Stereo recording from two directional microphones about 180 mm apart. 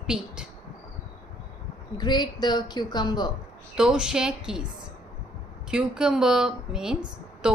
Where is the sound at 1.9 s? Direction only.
25° left (ahead or behind).